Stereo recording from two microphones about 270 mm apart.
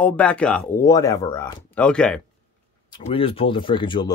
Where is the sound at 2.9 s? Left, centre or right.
Left.